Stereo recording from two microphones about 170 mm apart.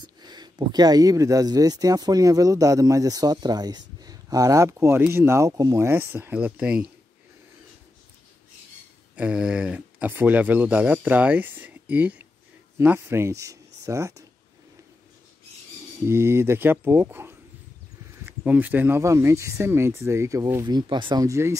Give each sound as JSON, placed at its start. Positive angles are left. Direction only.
{"t": 0.0, "sound": "speech", "side_deg": -25}
{"t": 9.1, "sound": "speech", "side_deg": -5}
{"t": 16.1, "sound": "speech", "side_deg": -15}